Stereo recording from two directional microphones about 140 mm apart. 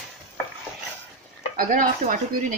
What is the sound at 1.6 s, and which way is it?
Stir, 75° right (ahead or behind).